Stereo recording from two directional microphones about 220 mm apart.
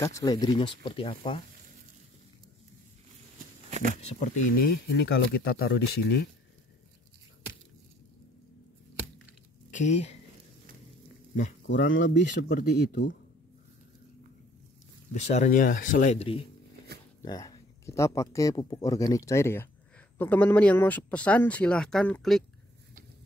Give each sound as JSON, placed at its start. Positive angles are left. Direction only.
{"t": 0.0, "sound": "speech", "side_deg": 15}
{"t": 3.7, "sound": "speech", "side_deg": -35}
{"t": 4.0, "sound": "speech", "side_deg": 30}
{"t": 9.7, "sound": "speech", "side_deg": 35}
{"t": 11.6, "sound": "speech", "side_deg": 55}
{"t": 12.4, "sound": "speech", "side_deg": 35}
{"t": 15.1, "sound": "speech", "side_deg": 30}
{"t": 17.2, "sound": "speech", "side_deg": 15}